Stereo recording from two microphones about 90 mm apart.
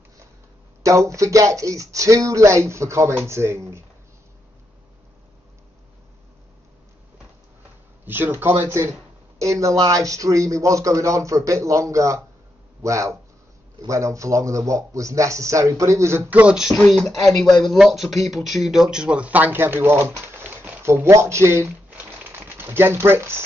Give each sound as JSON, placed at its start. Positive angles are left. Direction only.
{"t": 0.8, "sound": "speech", "side_deg": -35}
{"t": 8.0, "sound": "speech", "side_deg": -20}
{"t": 9.4, "sound": "speech", "side_deg": -35}
{"t": 16.3, "sound": "speech", "side_deg": -20}
{"t": 16.5, "sound": "speech", "side_deg": -5}
{"t": 21.9, "sound": "typewriter", "side_deg": -20}